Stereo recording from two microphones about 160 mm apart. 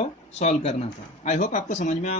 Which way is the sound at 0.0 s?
45° left (ahead or behind).